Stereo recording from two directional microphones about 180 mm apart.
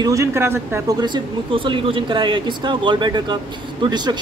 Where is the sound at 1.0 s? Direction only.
25° right (ahead or behind).